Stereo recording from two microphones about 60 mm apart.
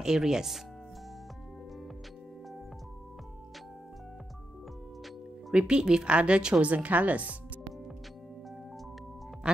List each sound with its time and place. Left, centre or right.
0.0 s a woman's voice: centre
5.5 s a woman's voice: centre